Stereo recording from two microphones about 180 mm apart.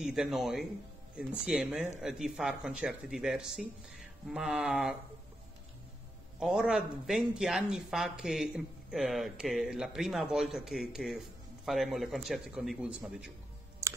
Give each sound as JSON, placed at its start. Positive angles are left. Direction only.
{"t": 0.0, "sound": "speech", "side_deg": -5}
{"t": 6.4, "sound": "speech", "side_deg": -5}
{"t": 13.8, "sound": "computer keyboard", "side_deg": -15}